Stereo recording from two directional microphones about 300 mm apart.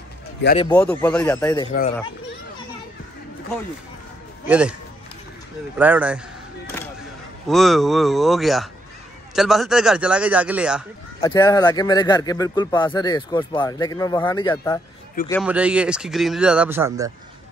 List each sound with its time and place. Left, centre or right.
0.4 s speech: left
0.7 s speech: centre
4.5 s speech: centre
5.8 s speech: centre
7.4 s speech: centre
11.1 s a man's voice: centre
15.4 s speech: centre